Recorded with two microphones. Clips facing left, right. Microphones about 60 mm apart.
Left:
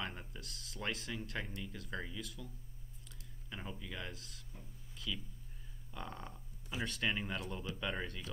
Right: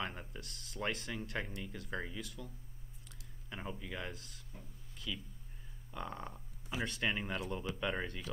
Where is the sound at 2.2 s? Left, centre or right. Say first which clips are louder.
Right 1 dB; centre.